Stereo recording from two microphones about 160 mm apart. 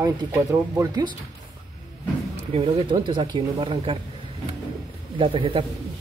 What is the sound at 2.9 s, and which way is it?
Speech, 25° right (ahead or behind).